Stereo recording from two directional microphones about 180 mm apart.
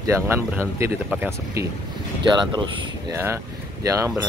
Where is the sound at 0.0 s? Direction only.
15° right (ahead or behind).